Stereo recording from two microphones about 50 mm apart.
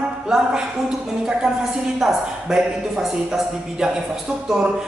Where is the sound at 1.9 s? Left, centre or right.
Centre.